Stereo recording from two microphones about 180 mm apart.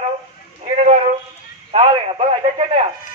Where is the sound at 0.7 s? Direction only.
40° right (ahead or behind).